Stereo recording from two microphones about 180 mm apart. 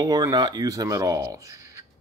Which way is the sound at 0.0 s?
20° right (ahead or behind).